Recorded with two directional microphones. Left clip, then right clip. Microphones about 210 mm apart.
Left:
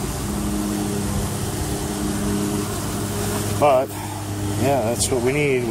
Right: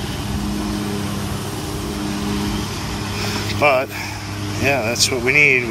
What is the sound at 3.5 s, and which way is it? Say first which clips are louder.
Speech: right 1 dB; 15° left (ahead or behind).